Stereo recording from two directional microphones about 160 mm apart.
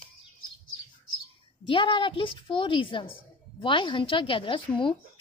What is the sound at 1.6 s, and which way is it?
A woman's voice, 30° left (ahead or behind).